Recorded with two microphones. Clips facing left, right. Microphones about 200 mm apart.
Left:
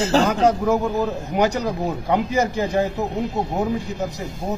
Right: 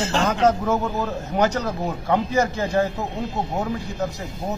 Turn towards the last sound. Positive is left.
turn(degrees=15)  # may be behind; listen again after turning